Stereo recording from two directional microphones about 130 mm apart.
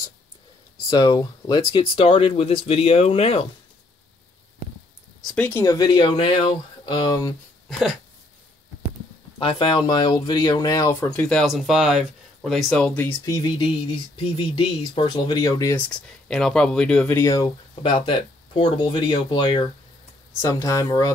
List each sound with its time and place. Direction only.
0.8 s speech: 30° left (ahead or behind); by 3.4 s 50° left (ahead or behind)
5.2 s speech: 10° left (ahead or behind)
5.7 s speech: 35° left (ahead or behind)
7.7 s speech: 5° right (ahead or behind)
9.4 s speech: 40° left (ahead or behind); by 11.1 s 25° left (ahead or behind)
11.1 s speech: 5° left (ahead or behind)
13.0 s speech: 25° left (ahead or behind)
15.7 s speech: 5° left (ahead or behind)
17.1 s speech: 25° left (ahead or behind)
17.8 s speech: 40° left (ahead or behind)
20.4 s speech: 25° left (ahead or behind)